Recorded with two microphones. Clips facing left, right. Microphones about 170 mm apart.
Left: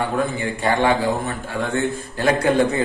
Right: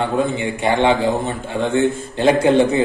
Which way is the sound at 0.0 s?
20° right (ahead or behind).